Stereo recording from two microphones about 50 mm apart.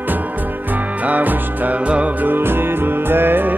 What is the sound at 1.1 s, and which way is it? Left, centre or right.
Music, right.